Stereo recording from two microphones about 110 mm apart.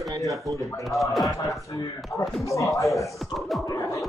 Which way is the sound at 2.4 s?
30° left (ahead or behind).